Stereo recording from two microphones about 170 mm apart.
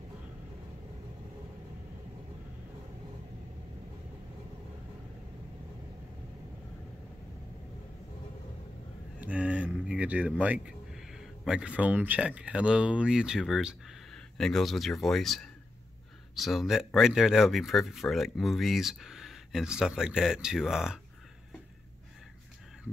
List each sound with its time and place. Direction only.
9.2 s speech: 5° right (ahead or behind)